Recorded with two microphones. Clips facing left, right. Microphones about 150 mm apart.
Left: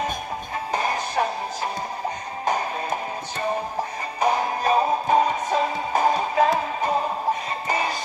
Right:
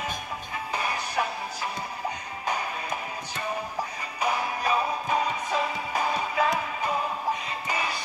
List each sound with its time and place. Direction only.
0.7 s music: 40° left (ahead or behind)
4.2 s music: 35° left (ahead or behind)